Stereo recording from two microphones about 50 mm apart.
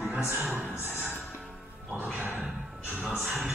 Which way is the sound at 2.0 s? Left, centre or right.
Right.